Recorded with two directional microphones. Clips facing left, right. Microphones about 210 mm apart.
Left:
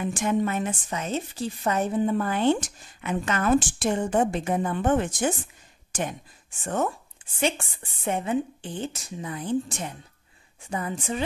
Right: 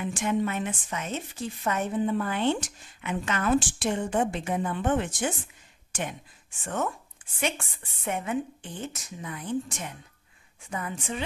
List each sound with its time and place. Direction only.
0.0 s speech: 40° left (ahead or behind)
5.9 s a sound: 40° left (ahead or behind)
6.6 s speech: 35° left (ahead or behind)